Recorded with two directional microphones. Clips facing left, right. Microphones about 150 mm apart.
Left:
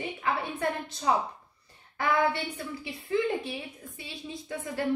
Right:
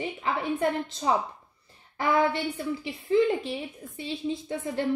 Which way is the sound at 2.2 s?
20° right (ahead or behind).